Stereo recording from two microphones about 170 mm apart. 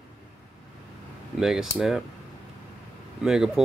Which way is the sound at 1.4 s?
5° right (ahead or behind).